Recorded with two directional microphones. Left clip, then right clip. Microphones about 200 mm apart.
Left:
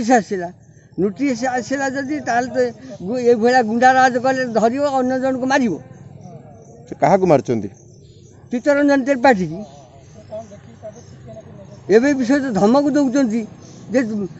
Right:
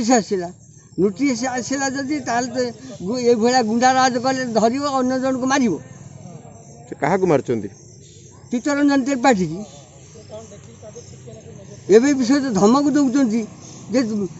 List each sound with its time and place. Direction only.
0.0 s a man's voice: 5° left (ahead or behind)
6.9 s a man's voice: 50° left (ahead or behind)
8.5 s a man's voice: 5° left (ahead or behind)
11.9 s a man's voice: 5° left (ahead or behind)